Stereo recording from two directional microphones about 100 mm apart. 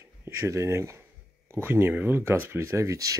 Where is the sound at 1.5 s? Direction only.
20° right (ahead or behind).